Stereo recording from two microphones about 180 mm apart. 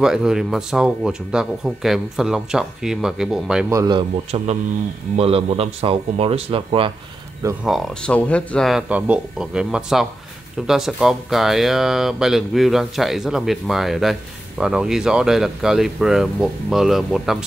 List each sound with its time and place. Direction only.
0.0 s speech: 5° right (ahead or behind)
3.7 s speech: 20° right (ahead or behind)
5.1 s speech: 35° right (ahead or behind)
7.6 s speech: centre (ahead or behind)